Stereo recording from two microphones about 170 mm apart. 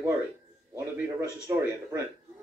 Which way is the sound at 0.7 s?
15° right (ahead or behind).